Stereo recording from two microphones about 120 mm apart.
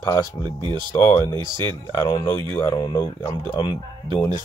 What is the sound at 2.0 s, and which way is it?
Speech, 35° left (ahead or behind).